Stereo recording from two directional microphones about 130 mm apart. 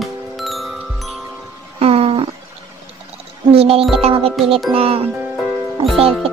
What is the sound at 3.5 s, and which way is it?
Speech, 50° right (ahead or behind).